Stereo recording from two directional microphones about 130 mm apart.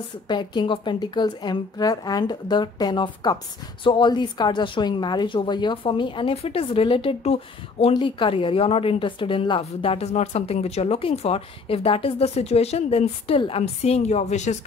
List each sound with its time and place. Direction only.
0.3 s a woman's voice: 35° left (ahead or behind); by 14.6 s 65° left (ahead or behind)